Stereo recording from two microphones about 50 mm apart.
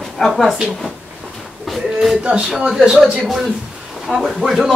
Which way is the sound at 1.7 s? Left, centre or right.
Centre.